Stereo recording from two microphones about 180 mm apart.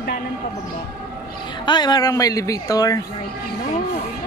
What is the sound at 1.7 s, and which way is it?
Speech, 25° left (ahead or behind).